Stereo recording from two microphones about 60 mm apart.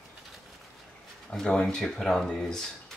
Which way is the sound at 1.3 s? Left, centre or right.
Centre.